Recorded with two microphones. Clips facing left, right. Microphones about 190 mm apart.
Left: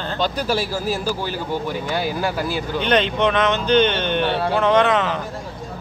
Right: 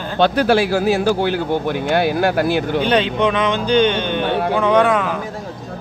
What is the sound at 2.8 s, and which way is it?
Speech, 10° right (ahead or behind).